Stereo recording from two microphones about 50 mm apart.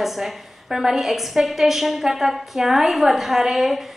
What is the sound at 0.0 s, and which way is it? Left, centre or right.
A woman's voice, centre.